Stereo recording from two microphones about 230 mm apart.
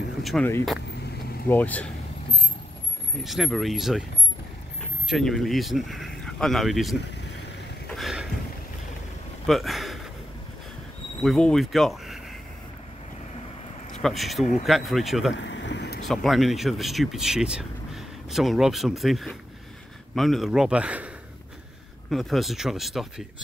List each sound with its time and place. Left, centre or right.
0.2 s speech: centre
1.5 s speech: centre
3.3 s speech: centre
5.1 s speech: centre
7.9 s a sound: centre
9.5 s a sound: centre
11.2 s speech: centre
14.0 s speech: centre
15.3 s a sound: left
16.1 s speech: centre
22.1 s speech: centre